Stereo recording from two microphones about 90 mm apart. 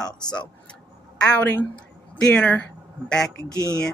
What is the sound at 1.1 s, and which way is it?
A woman's voice, 10° left (ahead or behind).